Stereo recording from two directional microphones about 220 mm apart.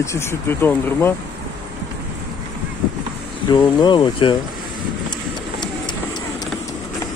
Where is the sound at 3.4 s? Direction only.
20° left (ahead or behind).